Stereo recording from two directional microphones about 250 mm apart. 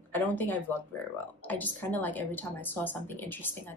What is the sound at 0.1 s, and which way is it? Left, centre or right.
Speech, centre.